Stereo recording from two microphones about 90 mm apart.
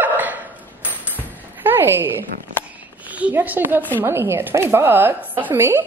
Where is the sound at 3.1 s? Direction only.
15° right (ahead or behind).